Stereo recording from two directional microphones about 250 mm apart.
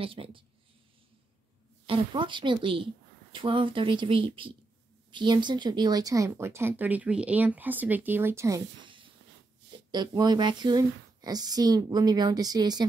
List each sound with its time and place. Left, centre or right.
0.0 s a woman's voice: right
1.9 s a woman's voice: centre